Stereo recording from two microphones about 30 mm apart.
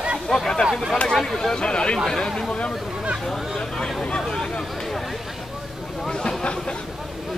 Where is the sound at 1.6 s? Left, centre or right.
Left.